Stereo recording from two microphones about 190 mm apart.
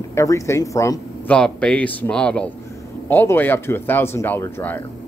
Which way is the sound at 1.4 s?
5° left (ahead or behind).